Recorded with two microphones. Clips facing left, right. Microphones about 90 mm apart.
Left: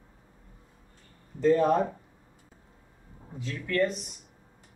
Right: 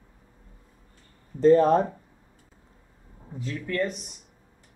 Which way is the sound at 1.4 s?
35° right (ahead or behind).